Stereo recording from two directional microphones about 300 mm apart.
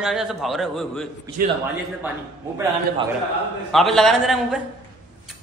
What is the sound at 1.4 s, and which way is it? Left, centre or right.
Speech, right.